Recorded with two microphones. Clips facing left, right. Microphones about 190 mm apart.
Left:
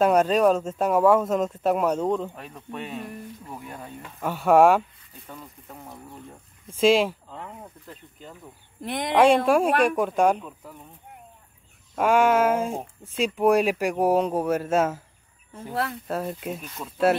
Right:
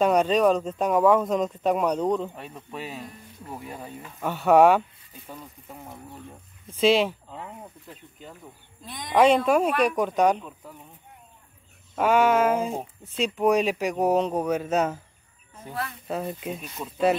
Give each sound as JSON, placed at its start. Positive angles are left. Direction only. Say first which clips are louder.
{"t": 0.0, "sound": "speech", "louder": "left 1 dB", "side_deg": 5}
{"t": 4.3, "sound": "speech", "louder": "even", "side_deg": 5}
{"t": 7.9, "sound": "speech", "louder": "left 1 dB", "side_deg": -5}
{"t": 8.8, "sound": "speech", "louder": "left 10 dB", "side_deg": 70}
{"t": 9.2, "sound": "speech", "louder": "left 1 dB", "side_deg": 10}
{"t": 12.0, "sound": "speech", "louder": "left 1 dB", "side_deg": 10}
{"t": 16.1, "sound": "speech", "louder": "left 1 dB", "side_deg": 0}
{"t": 16.6, "sound": "speech", "louder": "right 1 dB", "side_deg": -10}